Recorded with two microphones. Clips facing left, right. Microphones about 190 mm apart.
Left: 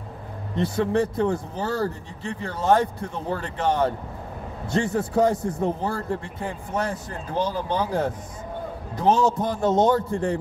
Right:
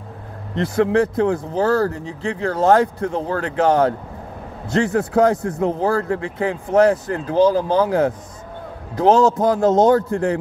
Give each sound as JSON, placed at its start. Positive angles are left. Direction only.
{"t": 0.6, "sound": "speech", "side_deg": -90}